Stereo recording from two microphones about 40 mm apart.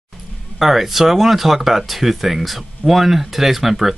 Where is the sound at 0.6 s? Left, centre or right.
Centre.